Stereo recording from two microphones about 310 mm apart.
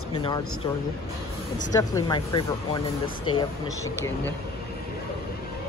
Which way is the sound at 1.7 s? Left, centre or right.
Centre.